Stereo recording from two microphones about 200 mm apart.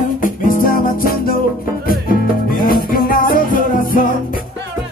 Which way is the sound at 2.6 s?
45° left (ahead or behind).